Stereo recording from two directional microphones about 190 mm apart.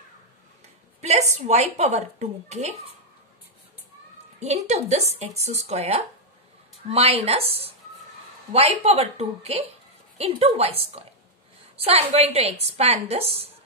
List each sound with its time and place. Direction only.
1.0 s a woman's voice: 35° right (ahead or behind)
4.4 s a woman's voice: 35° right (ahead or behind)